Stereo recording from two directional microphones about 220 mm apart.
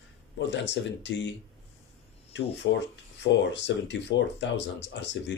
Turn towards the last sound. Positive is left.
turn(degrees=55)  # may be behind; listen again after turning